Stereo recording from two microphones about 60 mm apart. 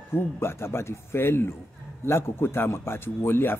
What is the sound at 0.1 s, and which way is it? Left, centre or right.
A man's voice, left.